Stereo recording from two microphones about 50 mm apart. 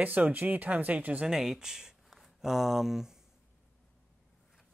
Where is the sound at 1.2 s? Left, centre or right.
Centre.